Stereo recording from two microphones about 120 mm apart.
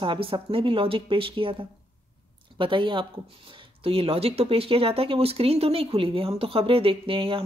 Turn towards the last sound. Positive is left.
turn(degrees=-50)  # may be behind; listen again after turning